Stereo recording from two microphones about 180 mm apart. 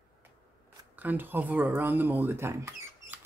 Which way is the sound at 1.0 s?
10° right (ahead or behind).